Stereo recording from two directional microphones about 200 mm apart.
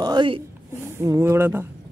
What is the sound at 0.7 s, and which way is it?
Speech, 15° right (ahead or behind).